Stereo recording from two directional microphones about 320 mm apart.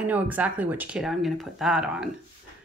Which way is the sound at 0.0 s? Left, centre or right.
Centre.